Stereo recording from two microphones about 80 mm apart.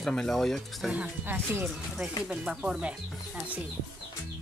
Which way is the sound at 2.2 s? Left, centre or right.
Centre.